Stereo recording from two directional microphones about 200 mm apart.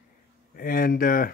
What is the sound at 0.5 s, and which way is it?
Speech, 45° left (ahead or behind).